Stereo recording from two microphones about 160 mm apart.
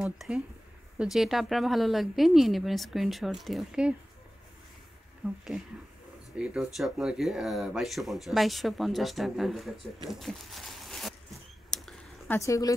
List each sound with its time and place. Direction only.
0.0 s speech: 5° right (ahead or behind)
6.3 s speech: 5° right (ahead or behind)
11.7 s a sound: centre (ahead or behind)
12.3 s speech: 20° left (ahead or behind)